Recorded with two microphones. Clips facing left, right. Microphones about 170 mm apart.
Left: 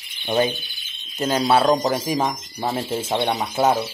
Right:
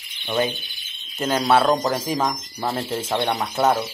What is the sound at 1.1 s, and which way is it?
Speech, 25° left (ahead or behind).